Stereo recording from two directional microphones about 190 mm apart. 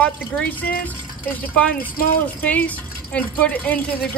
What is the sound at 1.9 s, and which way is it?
Speech, 50° left (ahead or behind).